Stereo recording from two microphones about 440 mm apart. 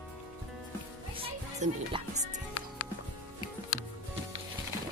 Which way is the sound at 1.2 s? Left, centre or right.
Centre.